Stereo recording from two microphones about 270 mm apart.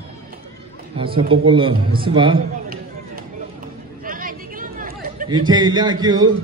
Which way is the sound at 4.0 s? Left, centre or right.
Right.